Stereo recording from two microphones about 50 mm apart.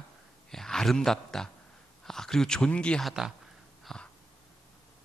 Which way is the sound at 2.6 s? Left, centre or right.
Left.